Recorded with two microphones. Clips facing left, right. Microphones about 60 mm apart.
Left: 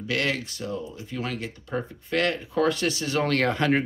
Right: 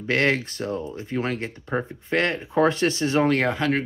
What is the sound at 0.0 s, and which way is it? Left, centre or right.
Speech, right.